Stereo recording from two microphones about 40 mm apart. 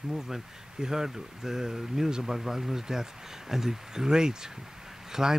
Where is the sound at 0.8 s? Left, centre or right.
Centre.